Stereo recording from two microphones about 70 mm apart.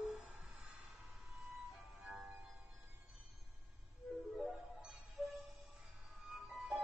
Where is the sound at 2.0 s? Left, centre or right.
Centre.